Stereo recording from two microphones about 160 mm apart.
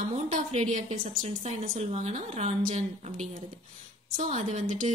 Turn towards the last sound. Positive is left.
turn(degrees=-55)  # may be behind; listen again after turning